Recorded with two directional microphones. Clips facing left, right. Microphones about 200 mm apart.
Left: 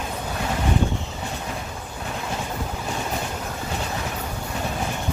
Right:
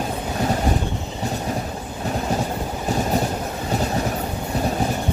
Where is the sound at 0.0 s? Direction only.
35° right (ahead or behind).